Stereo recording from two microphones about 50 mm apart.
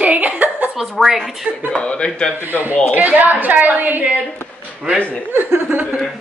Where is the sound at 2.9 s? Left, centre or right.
Right.